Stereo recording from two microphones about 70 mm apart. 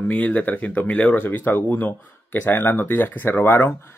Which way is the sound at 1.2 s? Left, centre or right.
Left.